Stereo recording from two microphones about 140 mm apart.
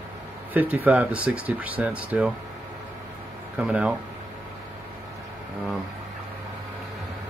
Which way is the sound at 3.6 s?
10° right (ahead or behind).